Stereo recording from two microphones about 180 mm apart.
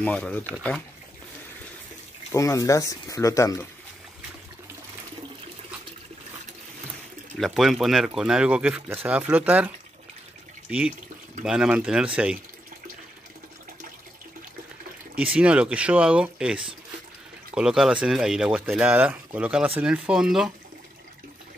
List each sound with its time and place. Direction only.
0.0 s speech: 5° left (ahead or behind)
2.3 s speech: 15° left (ahead or behind)
7.3 s speech: centre (ahead or behind)
11.4 s speech: 5° right (ahead or behind)
15.3 s speech: 5° right (ahead or behind)